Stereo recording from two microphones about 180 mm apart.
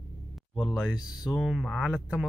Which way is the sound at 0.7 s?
5° right (ahead or behind).